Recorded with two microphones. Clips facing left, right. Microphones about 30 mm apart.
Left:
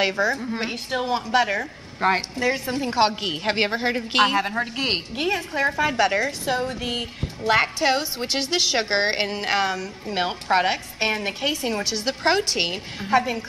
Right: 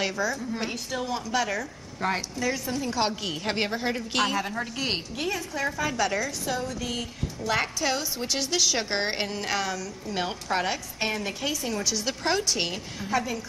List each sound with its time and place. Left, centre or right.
0.0 s a woman's voice: left
0.4 s a woman's voice: left